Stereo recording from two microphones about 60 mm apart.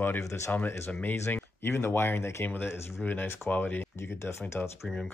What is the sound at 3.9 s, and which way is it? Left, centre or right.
Speech, left.